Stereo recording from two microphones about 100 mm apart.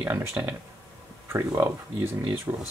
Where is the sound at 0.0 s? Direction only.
20° right (ahead or behind).